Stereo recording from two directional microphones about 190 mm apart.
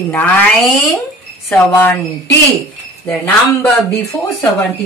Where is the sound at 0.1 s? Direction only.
5° left (ahead or behind).